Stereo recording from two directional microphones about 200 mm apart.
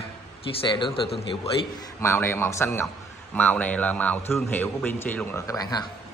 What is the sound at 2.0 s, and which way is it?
Speech, 10° left (ahead or behind).